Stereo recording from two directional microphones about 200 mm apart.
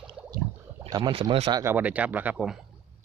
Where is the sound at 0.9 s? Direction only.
25° right (ahead or behind); by 2.6 s 5° right (ahead or behind).